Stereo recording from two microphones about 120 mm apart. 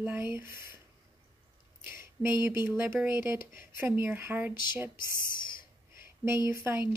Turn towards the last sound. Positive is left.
turn(degrees=-20)  # may be behind; listen again after turning